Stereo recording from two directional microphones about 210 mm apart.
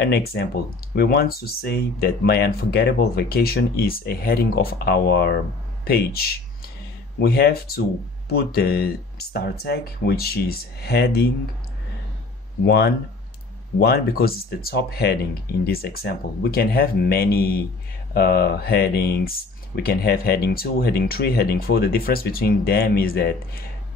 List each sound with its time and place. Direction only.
0.0 s speech: 50° left (ahead or behind)
12.6 s speech: 50° left (ahead or behind)